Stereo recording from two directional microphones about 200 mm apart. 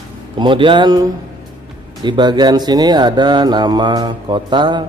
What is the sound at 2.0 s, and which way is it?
Speech, 20° right (ahead or behind).